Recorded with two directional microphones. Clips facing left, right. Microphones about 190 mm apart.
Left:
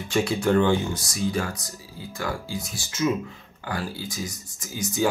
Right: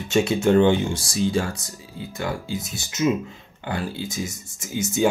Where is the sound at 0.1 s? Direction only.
25° right (ahead or behind).